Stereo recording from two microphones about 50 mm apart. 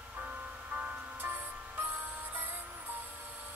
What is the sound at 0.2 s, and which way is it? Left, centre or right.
Music, right.